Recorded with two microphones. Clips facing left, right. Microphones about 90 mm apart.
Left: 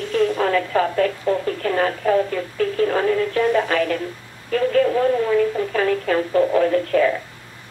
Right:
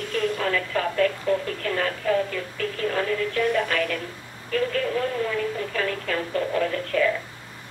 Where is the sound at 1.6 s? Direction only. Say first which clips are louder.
Left 6 dB; 35° left (ahead or behind).